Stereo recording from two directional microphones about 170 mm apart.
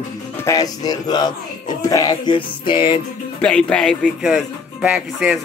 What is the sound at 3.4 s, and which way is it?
Speech, 5° left (ahead or behind).